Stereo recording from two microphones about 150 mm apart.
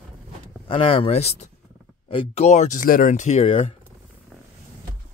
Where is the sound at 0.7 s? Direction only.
40° left (ahead or behind).